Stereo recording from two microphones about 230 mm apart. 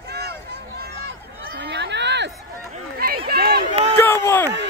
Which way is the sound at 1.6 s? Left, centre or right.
Right.